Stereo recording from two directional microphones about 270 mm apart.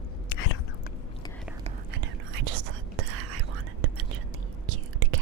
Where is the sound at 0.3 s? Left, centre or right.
Left.